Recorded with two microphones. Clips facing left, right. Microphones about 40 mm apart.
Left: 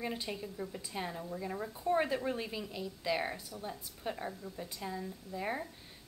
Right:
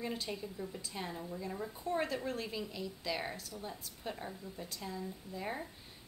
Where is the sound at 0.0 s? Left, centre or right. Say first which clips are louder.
Left 1 dB; centre.